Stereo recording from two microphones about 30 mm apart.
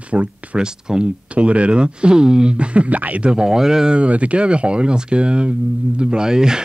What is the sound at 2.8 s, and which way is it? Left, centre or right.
Speech, right.